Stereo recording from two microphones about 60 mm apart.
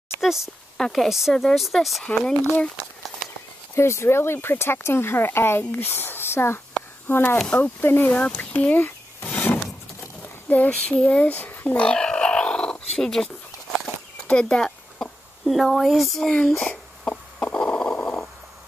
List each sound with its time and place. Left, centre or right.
0.7 s a woman's voice: centre
1.0 s speech: centre
3.7 s speech: left
7.4 s speech: left
11.8 s dog: centre
13.1 s a sound: centre
15.4 s speech: centre
16.6 s a sound: centre